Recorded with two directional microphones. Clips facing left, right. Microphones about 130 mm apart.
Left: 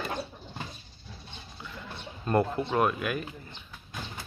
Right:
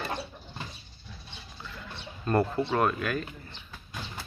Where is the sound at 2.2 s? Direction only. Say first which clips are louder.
Even; 20° left (ahead or behind).